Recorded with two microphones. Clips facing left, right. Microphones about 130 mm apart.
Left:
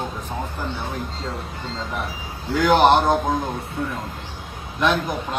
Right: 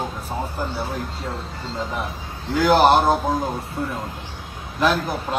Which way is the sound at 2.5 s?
Centre (ahead or behind).